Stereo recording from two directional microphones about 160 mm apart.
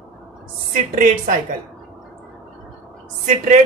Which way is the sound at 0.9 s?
55° right (ahead or behind).